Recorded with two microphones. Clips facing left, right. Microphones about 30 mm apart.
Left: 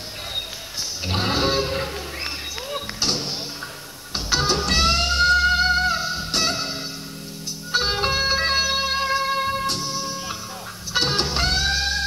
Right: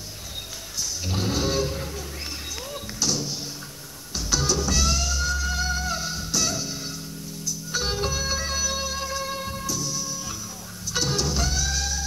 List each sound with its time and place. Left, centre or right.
1.0 s a sound: left
2.7 s music: left
5.9 s music: left
6.3 s music: left